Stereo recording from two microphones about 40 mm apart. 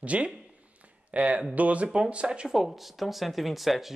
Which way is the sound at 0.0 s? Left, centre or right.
Right.